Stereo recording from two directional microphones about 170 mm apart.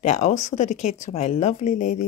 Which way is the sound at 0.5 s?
45° left (ahead or behind).